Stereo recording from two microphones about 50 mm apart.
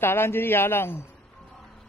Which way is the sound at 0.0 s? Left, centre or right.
Left.